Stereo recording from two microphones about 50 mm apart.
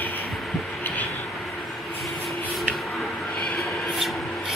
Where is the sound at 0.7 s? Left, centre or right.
Left.